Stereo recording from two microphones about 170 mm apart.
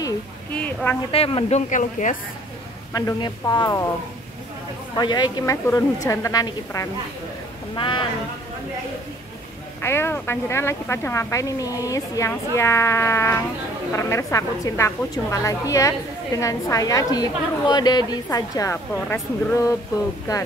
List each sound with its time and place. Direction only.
1.1 s speech: 35° left (ahead or behind)
2.9 s a woman's voice: 20° left (ahead or behind)
4.9 s a woman's voice: 25° left (ahead or behind)
9.8 s a woman's voice: 15° left (ahead or behind)